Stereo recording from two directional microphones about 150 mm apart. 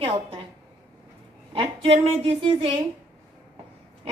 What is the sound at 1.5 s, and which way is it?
A woman's voice, 40° right (ahead or behind).